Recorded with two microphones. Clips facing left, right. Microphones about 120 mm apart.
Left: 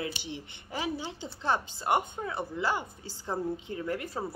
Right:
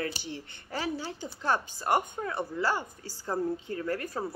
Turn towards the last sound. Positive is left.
turn(degrees=20)  # may be behind; listen again after turning